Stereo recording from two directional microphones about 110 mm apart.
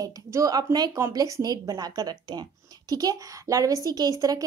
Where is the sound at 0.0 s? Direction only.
30° right (ahead or behind).